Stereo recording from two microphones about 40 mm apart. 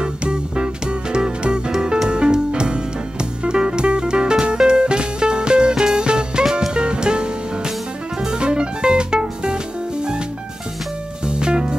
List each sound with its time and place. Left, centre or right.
0.0 s music: right
11.2 s music: right